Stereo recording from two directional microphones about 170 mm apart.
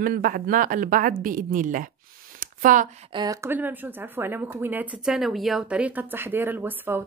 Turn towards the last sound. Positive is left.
turn(degrees=-10)  # may be behind; listen again after turning